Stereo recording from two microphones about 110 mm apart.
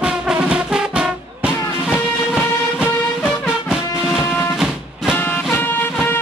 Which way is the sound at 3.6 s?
5° right (ahead or behind).